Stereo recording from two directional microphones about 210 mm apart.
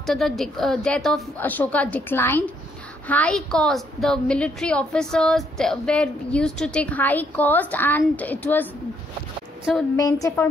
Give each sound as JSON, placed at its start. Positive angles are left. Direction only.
{"t": 0.0, "sound": "a woman's voice", "side_deg": 0}
{"t": 9.9, "sound": "a woman's voice", "side_deg": 15}